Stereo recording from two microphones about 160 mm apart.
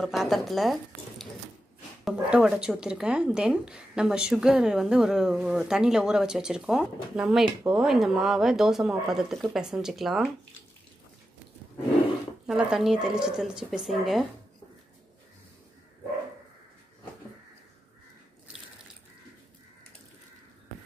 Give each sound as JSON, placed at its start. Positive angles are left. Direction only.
{"t": 0.0, "sound": "speech", "side_deg": 0}
{"t": 12.4, "sound": "speech", "side_deg": -5}